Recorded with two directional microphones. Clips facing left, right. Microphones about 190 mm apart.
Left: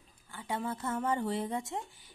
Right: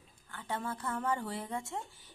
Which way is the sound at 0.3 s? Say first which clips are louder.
Left 2 dB; 10° left (ahead or behind).